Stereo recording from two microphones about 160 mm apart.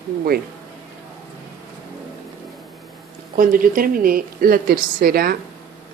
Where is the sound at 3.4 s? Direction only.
60° right (ahead or behind).